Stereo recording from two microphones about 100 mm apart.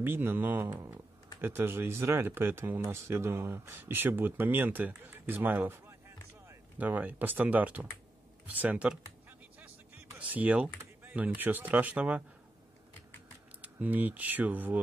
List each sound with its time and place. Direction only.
0.0 s speech: 20° right (ahead or behind)
10.1 s speech: 15° right (ahead or behind)
13.6 s speech: 15° right (ahead or behind)